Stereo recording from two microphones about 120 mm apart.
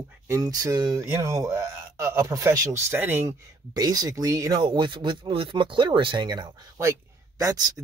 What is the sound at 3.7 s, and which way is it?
Speech, 30° right (ahead or behind).